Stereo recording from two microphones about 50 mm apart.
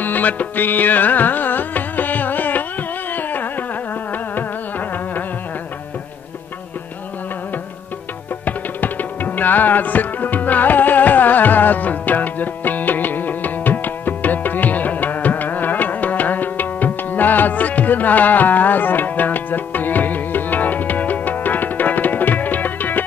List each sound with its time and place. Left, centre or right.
0.0 s music: left
3.1 s carnatic music: left
8.5 s tabla: left